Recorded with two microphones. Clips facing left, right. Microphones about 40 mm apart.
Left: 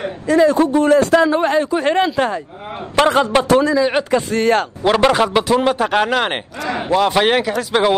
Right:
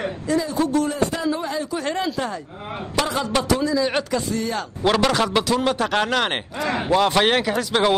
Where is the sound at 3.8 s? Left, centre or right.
Centre.